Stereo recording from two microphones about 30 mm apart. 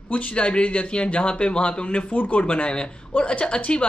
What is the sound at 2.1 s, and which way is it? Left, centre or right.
Speech, left.